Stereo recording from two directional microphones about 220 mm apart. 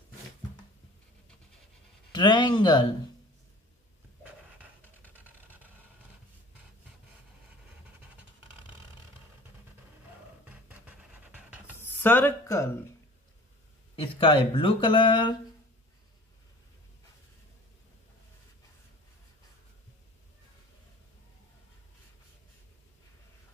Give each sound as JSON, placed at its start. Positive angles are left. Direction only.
{"t": 2.1, "sound": "speech", "side_deg": 20}
{"t": 10.4, "sound": "a sound", "side_deg": -5}
{"t": 11.8, "sound": "speech", "side_deg": 10}
{"t": 13.9, "sound": "speech", "side_deg": 25}